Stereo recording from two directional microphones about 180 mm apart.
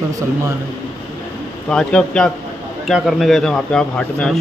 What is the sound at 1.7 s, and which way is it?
A man's voice, 5° left (ahead or behind).